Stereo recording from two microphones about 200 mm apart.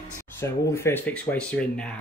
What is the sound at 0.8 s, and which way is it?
Speech, 10° left (ahead or behind).